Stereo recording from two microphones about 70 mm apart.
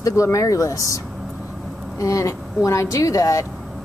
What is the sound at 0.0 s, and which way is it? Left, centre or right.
Speech, left.